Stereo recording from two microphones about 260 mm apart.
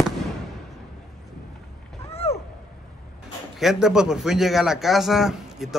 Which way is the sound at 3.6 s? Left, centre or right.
Centre.